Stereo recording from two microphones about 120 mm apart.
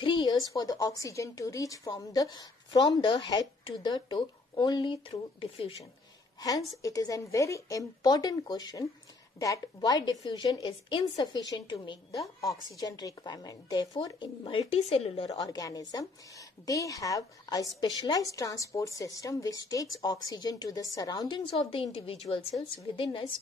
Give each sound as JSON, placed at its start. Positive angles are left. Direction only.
{"t": 0.0, "sound": "a woman's voice", "side_deg": 40}
{"t": 6.4, "sound": "a woman's voice", "side_deg": 30}
{"t": 9.8, "sound": "a woman's voice", "side_deg": 30}
{"t": 14.6, "sound": "speech", "side_deg": 60}
{"t": 15.3, "sound": "a woman's voice", "side_deg": 35}
{"t": 21.5, "sound": "a woman's voice", "side_deg": 50}